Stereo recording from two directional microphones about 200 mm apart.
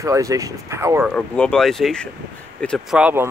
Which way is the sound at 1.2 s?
5° left (ahead or behind).